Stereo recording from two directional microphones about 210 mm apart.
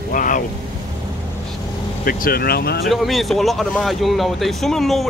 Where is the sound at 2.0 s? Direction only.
45° left (ahead or behind).